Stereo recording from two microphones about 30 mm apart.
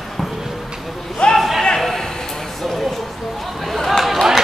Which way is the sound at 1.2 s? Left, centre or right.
Left.